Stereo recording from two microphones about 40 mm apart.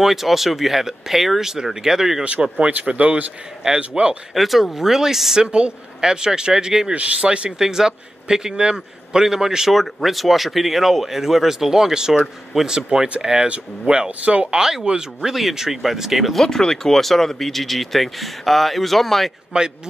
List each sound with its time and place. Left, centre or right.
0.0 s speech: centre
2.2 s speech: right
3.6 s speech: right
4.3 s a man's voice: centre
5.5 s speech: right
6.9 s speech: right
7.6 s a man's voice: centre
9.7 s a man's voice: centre; by 14.6 s right
14.6 s a man's voice: centre
16.4 s speech: centre
19.5 s speech: right